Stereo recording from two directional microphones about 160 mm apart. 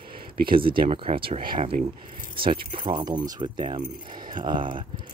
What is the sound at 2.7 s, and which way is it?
Speech, 30° right (ahead or behind).